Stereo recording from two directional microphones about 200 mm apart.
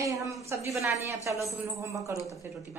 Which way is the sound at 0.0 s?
15° right (ahead or behind).